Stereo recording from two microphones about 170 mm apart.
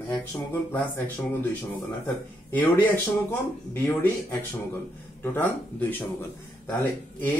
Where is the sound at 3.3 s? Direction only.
15° left (ahead or behind).